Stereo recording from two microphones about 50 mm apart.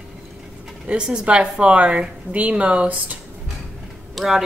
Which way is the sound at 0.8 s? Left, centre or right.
Centre.